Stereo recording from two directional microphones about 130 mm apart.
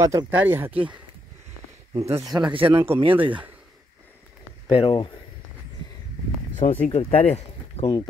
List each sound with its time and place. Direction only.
0.0 s speech: 25° right (ahead or behind)
0.3 s speech: 15° right (ahead or behind)
2.0 s speech: 25° right (ahead or behind)
2.6 s speech: 20° right (ahead or behind)
3.0 s speech: 45° right (ahead or behind)
4.6 s speech: 45° left (ahead or behind)
6.6 s speech: 60° left (ahead or behind)